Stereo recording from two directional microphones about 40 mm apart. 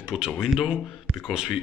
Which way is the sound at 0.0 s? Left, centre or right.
Centre.